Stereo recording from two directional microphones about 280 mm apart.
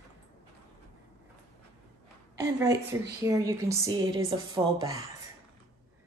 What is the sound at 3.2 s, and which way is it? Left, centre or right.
A woman's voice, centre.